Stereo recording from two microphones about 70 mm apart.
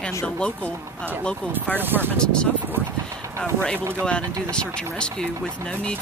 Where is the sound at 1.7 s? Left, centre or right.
Right.